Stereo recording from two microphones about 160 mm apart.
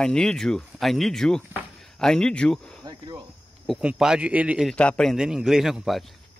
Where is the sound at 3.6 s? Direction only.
5° right (ahead or behind).